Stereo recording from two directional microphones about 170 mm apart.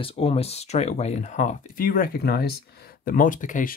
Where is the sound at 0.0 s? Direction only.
35° left (ahead or behind).